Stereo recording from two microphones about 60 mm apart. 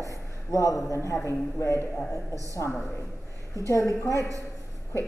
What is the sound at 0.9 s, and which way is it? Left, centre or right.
A man's voice, left.